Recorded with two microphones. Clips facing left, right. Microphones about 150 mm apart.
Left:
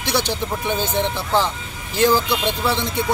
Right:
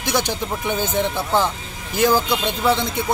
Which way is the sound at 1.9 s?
15° right (ahead or behind).